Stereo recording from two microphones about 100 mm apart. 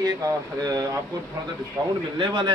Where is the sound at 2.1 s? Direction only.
55° right (ahead or behind).